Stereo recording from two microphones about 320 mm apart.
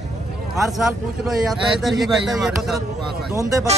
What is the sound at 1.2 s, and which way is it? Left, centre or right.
A man's voice, centre.